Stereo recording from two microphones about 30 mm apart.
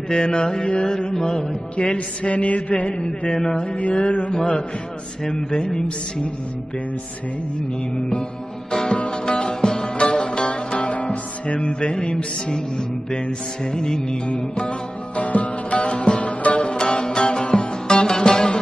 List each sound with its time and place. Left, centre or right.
0.1 s music: left
0.7 s mantra: left
2.2 s mantra: left
3.9 s mantra: left
5.5 s music: left
8.9 s mantra: left
9.3 s sitar: left
9.9 s music: left
12.5 s music: left
15.9 s music: left
16.7 s music: left